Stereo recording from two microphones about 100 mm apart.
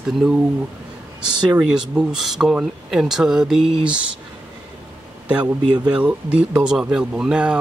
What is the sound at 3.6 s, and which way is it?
Speech, 55° right (ahead or behind).